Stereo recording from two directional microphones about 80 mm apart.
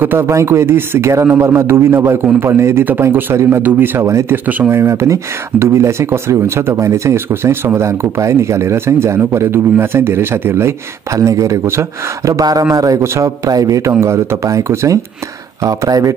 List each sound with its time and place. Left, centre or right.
0.0 s speech: right
4.0 s speech: right
4.5 s speech: right
11.1 s speech: right
12.3 s a man's voice: right